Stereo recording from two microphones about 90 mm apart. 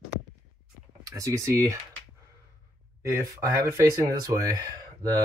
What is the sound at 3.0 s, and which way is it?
Speech, 35° right (ahead or behind).